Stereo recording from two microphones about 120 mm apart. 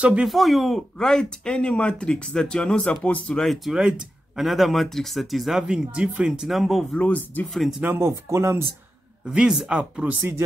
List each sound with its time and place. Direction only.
0.0 s speech: 10° right (ahead or behind); by 7.4 s 15° left (ahead or behind)
7.8 s speech: 15° right (ahead or behind)
9.2 s speech: 5° right (ahead or behind)